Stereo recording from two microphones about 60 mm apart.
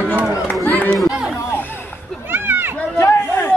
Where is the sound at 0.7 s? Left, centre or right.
Left.